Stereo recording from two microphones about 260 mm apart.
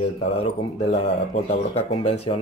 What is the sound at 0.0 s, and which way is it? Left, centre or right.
Speech, left.